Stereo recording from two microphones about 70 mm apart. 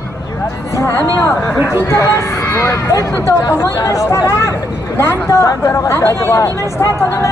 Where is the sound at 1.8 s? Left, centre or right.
Left.